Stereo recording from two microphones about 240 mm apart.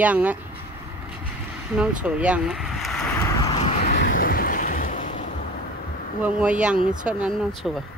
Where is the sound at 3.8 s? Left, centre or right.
Left.